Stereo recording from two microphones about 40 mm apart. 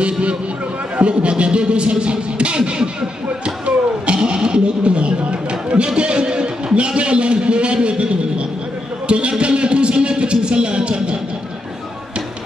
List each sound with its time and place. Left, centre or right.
0.0 s speech: right
0.9 s music: right
9.0 s a sound: right